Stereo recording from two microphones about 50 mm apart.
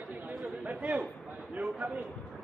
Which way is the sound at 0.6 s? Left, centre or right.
Right.